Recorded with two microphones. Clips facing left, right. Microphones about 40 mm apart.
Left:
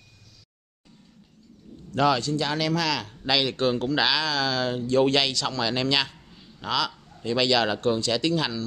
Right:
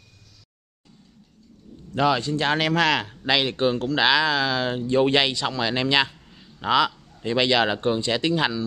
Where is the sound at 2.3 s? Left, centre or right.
Right.